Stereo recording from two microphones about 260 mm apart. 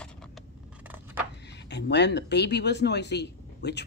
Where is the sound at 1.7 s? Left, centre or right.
Left.